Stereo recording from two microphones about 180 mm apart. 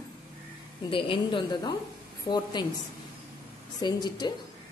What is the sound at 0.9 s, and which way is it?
A woman's voice, 30° left (ahead or behind).